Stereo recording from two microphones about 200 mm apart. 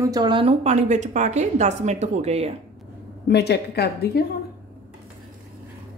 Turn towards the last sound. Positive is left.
turn(degrees=50)  # may be behind; listen again after turning